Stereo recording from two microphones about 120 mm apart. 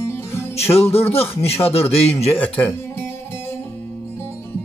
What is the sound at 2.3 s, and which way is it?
Speech, 10° left (ahead or behind).